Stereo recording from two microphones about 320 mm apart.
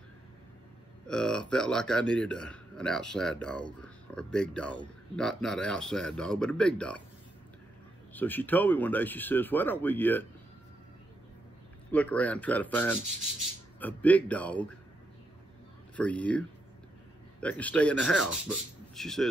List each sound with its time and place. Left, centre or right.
1.0 s a man's voice: centre
8.1 s a man's voice: centre
11.9 s a man's voice: centre
16.0 s a man's voice: centre